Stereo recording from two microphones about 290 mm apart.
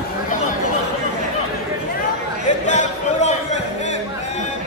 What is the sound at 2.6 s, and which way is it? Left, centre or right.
Music, left.